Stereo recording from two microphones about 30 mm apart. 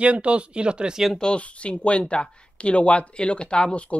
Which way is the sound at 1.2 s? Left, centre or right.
Left.